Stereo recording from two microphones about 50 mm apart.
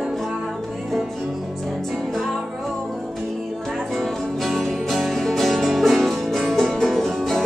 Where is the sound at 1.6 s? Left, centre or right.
Centre.